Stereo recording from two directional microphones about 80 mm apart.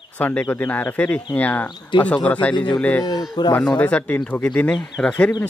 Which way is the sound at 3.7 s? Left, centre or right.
Centre.